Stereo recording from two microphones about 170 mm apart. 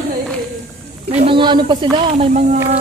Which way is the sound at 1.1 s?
30° right (ahead or behind).